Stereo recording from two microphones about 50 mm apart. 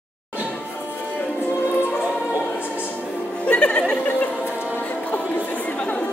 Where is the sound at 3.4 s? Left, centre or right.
Left.